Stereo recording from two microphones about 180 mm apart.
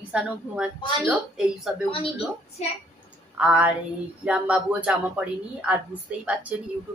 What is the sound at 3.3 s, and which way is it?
A woman's voice, 5° right (ahead or behind).